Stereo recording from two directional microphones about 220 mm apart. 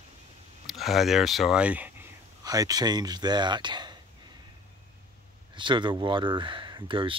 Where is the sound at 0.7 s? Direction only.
Centre (ahead or behind); by 4.0 s 20° right (ahead or behind).